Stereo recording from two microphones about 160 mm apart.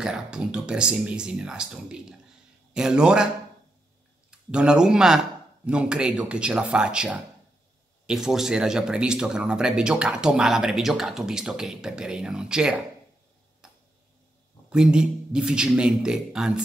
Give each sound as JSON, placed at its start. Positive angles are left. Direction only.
{"t": 0.0, "sound": "speech", "side_deg": -5}
{"t": 4.3, "sound": "speech", "side_deg": -5}
{"t": 13.6, "sound": "tick-tock", "side_deg": -5}
{"t": 14.7, "sound": "speech", "side_deg": -5}